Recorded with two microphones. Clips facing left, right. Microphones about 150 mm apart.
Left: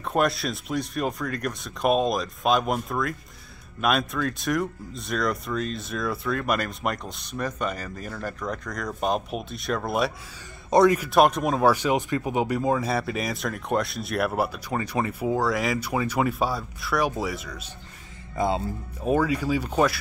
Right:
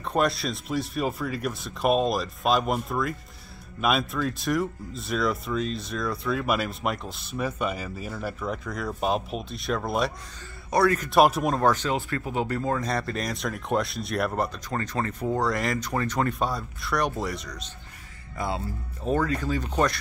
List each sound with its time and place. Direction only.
0.0 s speech: centre (ahead or behind)
10.7 s a man's voice: 20° left (ahead or behind)
11.0 s speech: centre (ahead or behind)
19.0 s speech: 10° left (ahead or behind)